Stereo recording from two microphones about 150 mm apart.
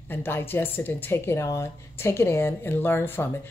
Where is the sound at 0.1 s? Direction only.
15° left (ahead or behind).